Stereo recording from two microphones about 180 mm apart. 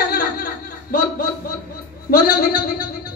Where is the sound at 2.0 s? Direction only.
55° left (ahead or behind).